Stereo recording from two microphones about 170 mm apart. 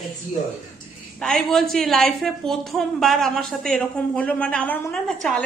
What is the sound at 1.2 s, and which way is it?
A woman's voice, centre (ahead or behind).